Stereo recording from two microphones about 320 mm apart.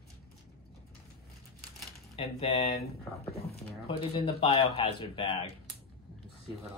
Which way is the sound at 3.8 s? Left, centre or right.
Centre.